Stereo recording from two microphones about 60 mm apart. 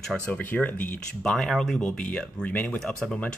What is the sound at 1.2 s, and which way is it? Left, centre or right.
Speech, centre.